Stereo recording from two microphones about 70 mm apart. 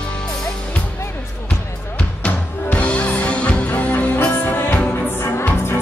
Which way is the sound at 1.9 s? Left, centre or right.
Centre.